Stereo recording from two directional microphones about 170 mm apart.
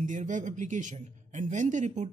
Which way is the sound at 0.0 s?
45° right (ahead or behind).